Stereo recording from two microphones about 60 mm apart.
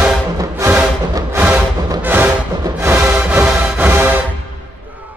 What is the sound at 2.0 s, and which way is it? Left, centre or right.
Music, right.